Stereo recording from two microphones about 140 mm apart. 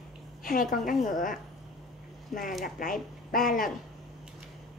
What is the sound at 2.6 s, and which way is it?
Speech, 90° left.